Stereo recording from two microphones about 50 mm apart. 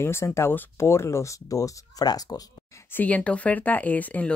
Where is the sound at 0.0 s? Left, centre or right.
Left.